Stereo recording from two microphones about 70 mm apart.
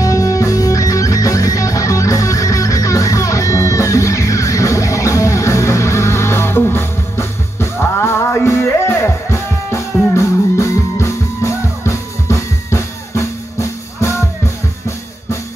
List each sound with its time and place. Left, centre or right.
0.0 s music: left